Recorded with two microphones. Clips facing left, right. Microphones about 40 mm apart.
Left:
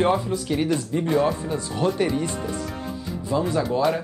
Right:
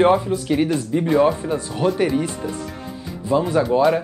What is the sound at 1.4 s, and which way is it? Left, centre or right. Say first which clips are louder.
Speech: right 3 dB; centre.